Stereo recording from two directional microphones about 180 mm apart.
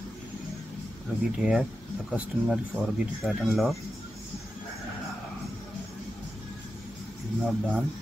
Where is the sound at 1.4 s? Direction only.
5° right (ahead or behind).